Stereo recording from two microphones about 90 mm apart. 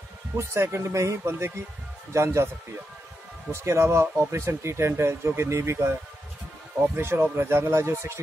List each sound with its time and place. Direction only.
0.4 s speech: 30° right (ahead or behind)
3.6 s speech: 30° right (ahead or behind)